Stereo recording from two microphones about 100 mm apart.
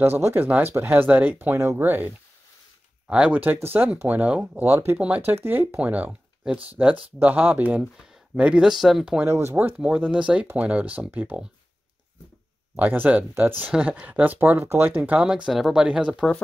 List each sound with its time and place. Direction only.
0.0 s speech: 20° right (ahead or behind); by 9.2 s 5° right (ahead or behind)
9.2 s speech: 25° right (ahead or behind)
9.8 s speech: 10° right (ahead or behind)
12.7 s speech: 20° right (ahead or behind)
15.1 s speech: 10° right (ahead or behind)